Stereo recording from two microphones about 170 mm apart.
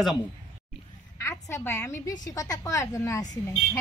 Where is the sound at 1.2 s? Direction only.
15° left (ahead or behind).